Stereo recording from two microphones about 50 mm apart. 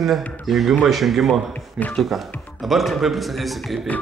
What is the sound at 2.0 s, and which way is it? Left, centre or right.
A man's voice, centre.